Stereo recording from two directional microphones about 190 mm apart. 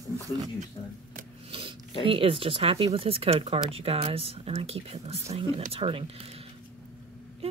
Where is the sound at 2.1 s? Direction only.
30° right (ahead or behind).